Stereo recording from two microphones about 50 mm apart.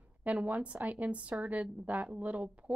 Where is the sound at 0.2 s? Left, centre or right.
Right.